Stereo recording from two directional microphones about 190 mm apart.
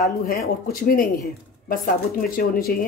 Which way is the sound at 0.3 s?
50° left (ahead or behind).